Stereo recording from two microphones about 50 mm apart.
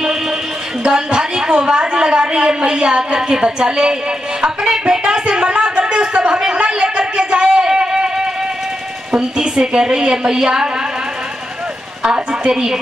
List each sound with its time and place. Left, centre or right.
0.8 s a woman's voice: centre
5.2 s a sound: centre
9.1 s a woman's voice: centre
12.0 s a woman's voice: centre